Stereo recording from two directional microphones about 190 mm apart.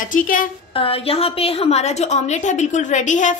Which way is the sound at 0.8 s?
30° left (ahead or behind).